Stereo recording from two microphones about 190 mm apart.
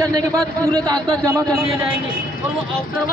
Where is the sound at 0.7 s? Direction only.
20° right (ahead or behind).